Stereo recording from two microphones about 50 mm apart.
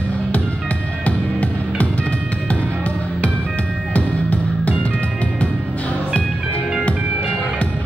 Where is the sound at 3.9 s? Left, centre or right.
Left.